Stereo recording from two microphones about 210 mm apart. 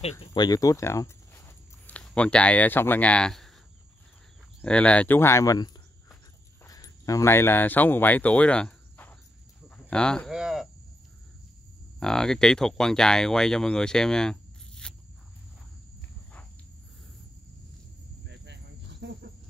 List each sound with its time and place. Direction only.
0.2 s speech: 20° left (ahead or behind); by 3.5 s centre (ahead or behind)
4.6 s speech: 5° left (ahead or behind)
12.0 s speech: centre (ahead or behind)
18.2 s cricket: 55° right (ahead or behind)